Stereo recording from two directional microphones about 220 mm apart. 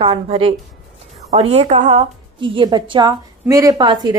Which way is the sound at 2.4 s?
20° right (ahead or behind).